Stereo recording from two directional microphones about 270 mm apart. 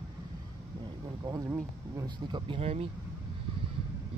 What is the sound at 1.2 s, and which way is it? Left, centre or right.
Speech, centre.